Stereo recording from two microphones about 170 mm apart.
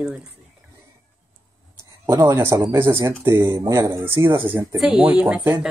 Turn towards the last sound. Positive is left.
turn(degrees=-10)  # may be behind; listen again after turning